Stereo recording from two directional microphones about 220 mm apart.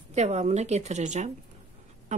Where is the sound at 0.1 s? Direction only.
30° right (ahead or behind).